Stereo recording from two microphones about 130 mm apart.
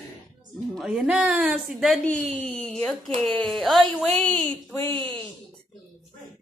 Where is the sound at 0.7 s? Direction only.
5° right (ahead or behind).